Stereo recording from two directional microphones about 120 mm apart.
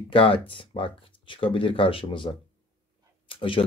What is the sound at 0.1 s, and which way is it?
Speech, 50° left (ahead or behind).